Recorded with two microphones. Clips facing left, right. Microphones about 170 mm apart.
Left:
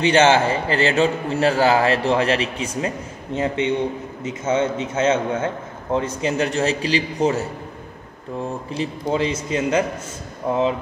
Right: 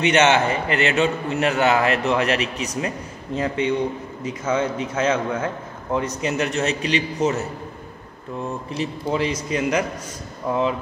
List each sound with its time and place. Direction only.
0.0 s a man's voice: 30° left (ahead or behind)
8.7 s a man's voice: 25° left (ahead or behind)